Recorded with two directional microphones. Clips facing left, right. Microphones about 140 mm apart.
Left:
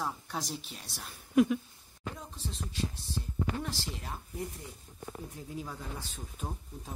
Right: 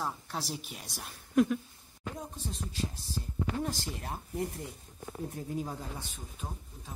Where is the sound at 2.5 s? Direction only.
40° right (ahead or behind).